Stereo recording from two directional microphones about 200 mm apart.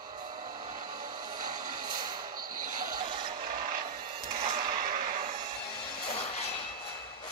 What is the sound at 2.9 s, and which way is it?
Vehicle, 20° right (ahead or behind).